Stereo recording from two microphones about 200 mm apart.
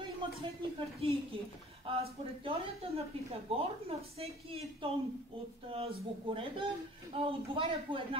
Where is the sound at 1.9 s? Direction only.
25° right (ahead or behind).